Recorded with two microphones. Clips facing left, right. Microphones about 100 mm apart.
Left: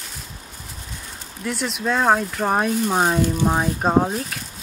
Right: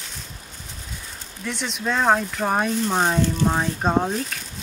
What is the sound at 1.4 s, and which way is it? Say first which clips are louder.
Speech: left 3 dB; 5° left (ahead or behind).